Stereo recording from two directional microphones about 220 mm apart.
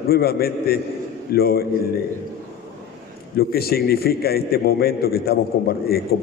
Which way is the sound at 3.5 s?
45° left (ahead or behind).